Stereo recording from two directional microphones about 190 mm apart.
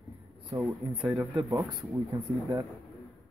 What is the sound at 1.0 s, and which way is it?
Speech, 5° right (ahead or behind).